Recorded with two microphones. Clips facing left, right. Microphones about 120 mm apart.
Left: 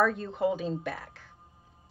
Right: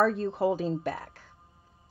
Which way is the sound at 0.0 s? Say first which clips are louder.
Right 2 dB; 35° right (ahead or behind).